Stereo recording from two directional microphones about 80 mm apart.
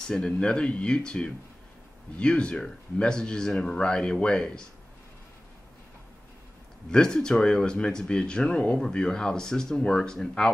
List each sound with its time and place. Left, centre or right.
0.0 s speech: centre
6.9 s speech: centre